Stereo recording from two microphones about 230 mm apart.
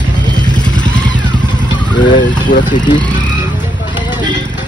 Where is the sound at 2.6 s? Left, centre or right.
Centre.